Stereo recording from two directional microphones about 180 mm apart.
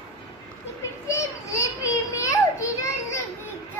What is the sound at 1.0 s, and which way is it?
Children playing, 20° left (ahead or behind).